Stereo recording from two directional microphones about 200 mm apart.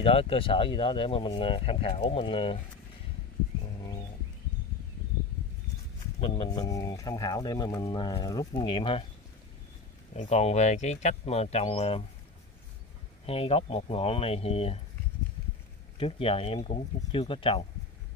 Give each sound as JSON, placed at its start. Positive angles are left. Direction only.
{"t": 0.0, "sound": "speech", "side_deg": 30}
{"t": 6.2, "sound": "speech", "side_deg": 25}
{"t": 10.1, "sound": "speech", "side_deg": 35}
{"t": 13.3, "sound": "speech", "side_deg": 30}
{"t": 16.0, "sound": "speech", "side_deg": 25}